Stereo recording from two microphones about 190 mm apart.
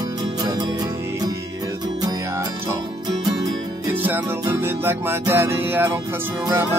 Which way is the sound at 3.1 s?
20° right (ahead or behind).